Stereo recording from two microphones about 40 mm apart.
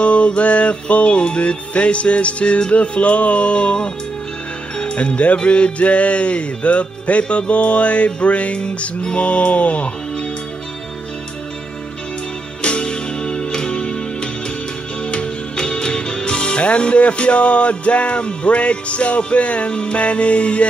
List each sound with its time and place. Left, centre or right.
0.0 s music: left
8.5 s music: left
12.6 s music: left
15.5 s speech: centre